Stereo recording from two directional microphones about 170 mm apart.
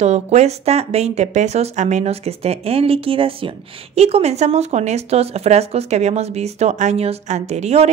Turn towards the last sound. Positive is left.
turn(degrees=-40)  # may be behind; listen again after turning